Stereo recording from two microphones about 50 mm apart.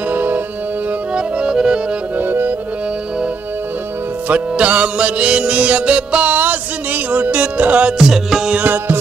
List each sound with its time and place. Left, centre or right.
0.1 s music: right
1.1 s accordion: centre
2.1 s accordion: right
4.3 s music: right
6.3 s music: right
8.0 s music: centre
8.5 s music: right